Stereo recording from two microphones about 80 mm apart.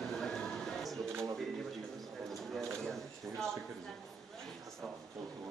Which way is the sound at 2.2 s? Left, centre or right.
Centre.